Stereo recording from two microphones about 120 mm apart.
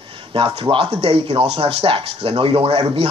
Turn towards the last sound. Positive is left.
turn(degrees=-50)  # may be behind; listen again after turning